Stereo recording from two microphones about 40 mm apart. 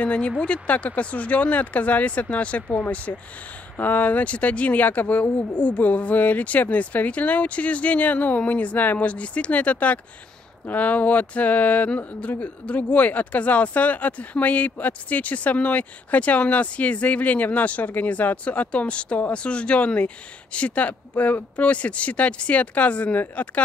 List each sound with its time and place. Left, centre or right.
0.0 s speech: left